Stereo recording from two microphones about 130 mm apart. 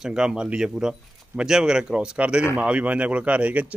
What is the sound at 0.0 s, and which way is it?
Speech, 5° right (ahead or behind).